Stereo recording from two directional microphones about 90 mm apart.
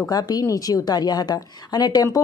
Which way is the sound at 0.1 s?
45° left (ahead or behind).